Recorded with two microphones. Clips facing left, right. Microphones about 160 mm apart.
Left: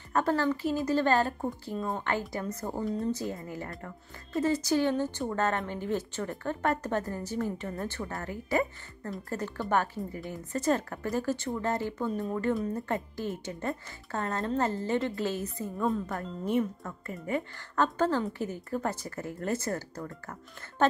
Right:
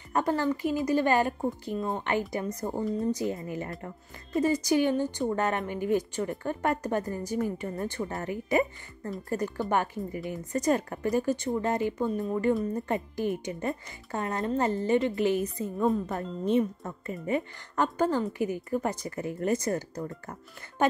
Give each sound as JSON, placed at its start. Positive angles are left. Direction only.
{"t": 0.1, "sound": "speech", "side_deg": -15}